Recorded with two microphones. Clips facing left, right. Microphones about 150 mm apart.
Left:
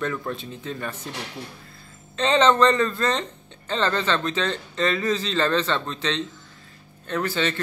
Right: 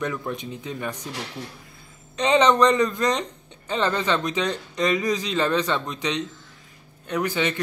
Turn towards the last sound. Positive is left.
turn(degrees=-15)  # may be behind; listen again after turning